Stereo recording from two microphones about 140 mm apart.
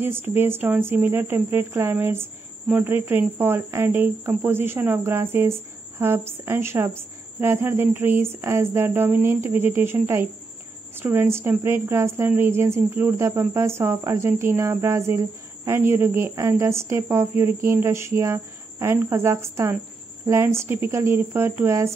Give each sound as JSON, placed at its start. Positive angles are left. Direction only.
{"t": 0.0, "sound": "speech", "side_deg": -15}